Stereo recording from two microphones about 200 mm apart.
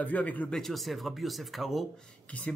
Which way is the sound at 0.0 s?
10° left (ahead or behind).